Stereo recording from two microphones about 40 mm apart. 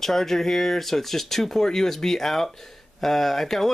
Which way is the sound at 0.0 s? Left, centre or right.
Centre.